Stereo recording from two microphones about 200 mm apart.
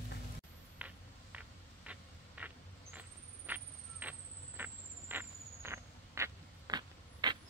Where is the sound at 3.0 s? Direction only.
10° right (ahead or behind).